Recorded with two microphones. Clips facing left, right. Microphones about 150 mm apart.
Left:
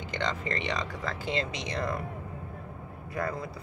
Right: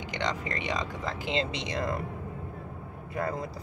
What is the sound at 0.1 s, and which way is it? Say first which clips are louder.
Speech: even; 15° right (ahead or behind).